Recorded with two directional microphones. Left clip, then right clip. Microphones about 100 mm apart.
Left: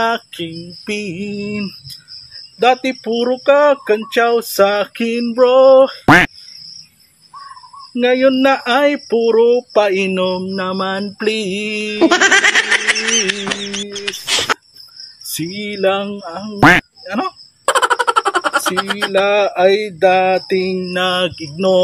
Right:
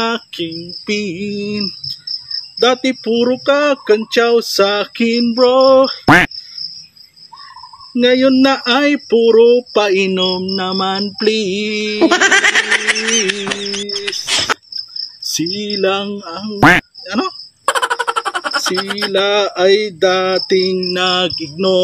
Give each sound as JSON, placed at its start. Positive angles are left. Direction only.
{"t": 0.0, "sound": "speech", "side_deg": -25}
{"t": 6.0, "sound": "speech", "side_deg": 0}
{"t": 7.9, "sound": "speech", "side_deg": -20}
{"t": 12.0, "sound": "a sound", "side_deg": 0}
{"t": 15.3, "sound": "speech", "side_deg": -20}
{"t": 16.5, "sound": "speech", "side_deg": 0}
{"t": 17.6, "sound": "a sound", "side_deg": 0}
{"t": 19.1, "sound": "speech", "side_deg": -15}